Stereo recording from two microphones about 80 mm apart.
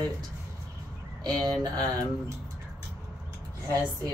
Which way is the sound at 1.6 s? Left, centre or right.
Right.